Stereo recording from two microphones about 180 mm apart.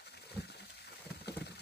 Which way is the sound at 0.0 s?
65° left (ahead or behind).